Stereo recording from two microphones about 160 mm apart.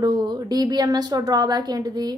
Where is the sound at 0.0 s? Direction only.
25° right (ahead or behind).